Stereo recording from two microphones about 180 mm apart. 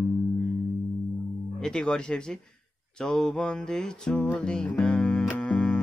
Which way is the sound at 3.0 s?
5° left (ahead or behind).